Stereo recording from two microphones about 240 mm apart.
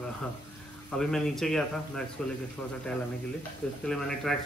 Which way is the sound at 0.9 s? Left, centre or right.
Centre.